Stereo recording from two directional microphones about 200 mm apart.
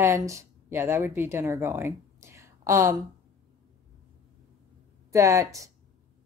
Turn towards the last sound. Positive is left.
turn(degrees=-15)  # may be behind; listen again after turning